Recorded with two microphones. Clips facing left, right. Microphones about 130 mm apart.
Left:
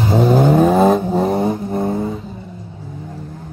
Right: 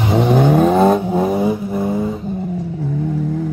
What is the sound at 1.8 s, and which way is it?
Foghorn, 10° right (ahead or behind).